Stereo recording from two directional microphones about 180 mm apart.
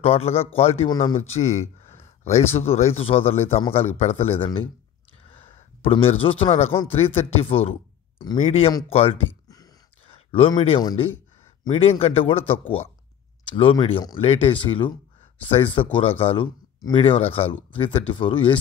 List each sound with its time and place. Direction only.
0.0 s a man's voice: 35° left (ahead or behind)
5.3 s a sound: 30° left (ahead or behind)
6.9 s a man's voice: 35° left (ahead or behind)